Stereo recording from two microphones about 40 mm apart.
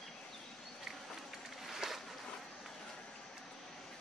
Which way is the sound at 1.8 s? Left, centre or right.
Centre.